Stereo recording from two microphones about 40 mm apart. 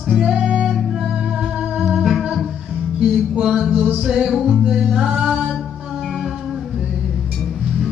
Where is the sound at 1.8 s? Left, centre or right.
Centre.